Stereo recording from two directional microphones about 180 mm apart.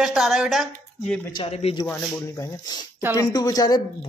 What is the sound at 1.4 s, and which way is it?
Speech, 35° left (ahead or behind).